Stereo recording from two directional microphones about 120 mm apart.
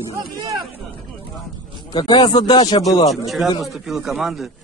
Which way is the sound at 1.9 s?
40° left (ahead or behind).